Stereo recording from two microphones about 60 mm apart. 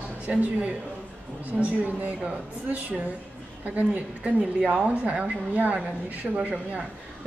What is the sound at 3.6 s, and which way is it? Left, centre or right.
Speech, right.